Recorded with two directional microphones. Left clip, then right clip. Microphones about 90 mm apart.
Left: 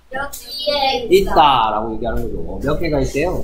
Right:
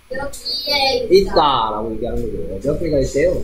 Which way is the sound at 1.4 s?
10° left (ahead or behind).